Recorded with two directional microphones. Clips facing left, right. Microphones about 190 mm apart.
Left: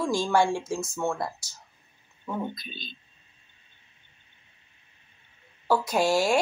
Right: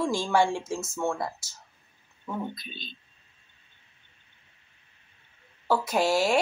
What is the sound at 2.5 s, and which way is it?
Speech, 40° left (ahead or behind).